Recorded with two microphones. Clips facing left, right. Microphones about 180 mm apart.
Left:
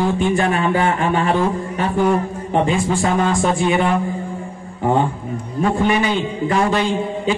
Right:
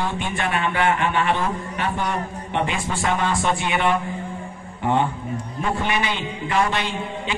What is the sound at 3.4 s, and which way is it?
Speech, 35° left (ahead or behind).